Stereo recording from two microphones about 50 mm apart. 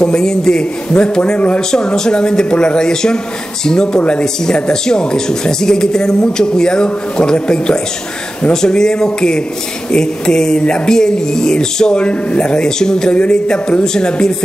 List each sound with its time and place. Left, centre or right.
0.0 s speech: centre